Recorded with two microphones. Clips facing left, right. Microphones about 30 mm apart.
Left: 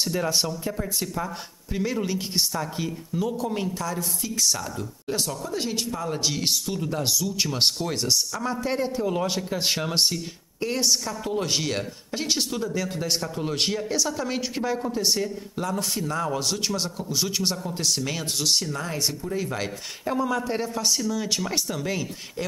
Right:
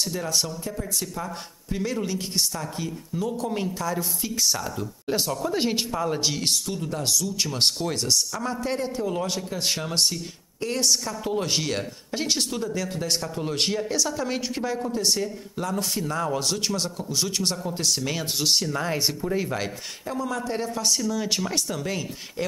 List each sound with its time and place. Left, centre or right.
0.0 s speech: centre
1.2 s speech: centre
3.3 s speech: centre
5.4 s speech: right
6.0 s speech: centre
18.7 s speech: centre
20.1 s speech: centre